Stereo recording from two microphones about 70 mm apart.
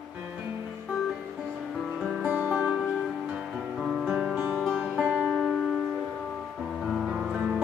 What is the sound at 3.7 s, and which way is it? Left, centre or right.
Guitar, centre.